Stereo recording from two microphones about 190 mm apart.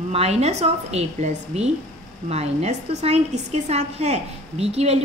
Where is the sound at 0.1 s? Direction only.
35° right (ahead or behind).